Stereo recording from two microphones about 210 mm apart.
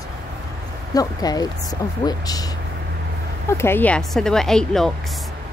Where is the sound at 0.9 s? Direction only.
20° left (ahead or behind); by 4.9 s centre (ahead or behind).